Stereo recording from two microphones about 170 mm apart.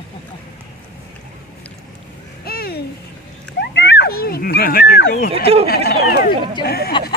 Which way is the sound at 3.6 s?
90° left.